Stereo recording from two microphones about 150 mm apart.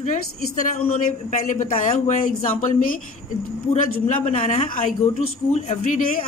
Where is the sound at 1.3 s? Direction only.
55° left (ahead or behind).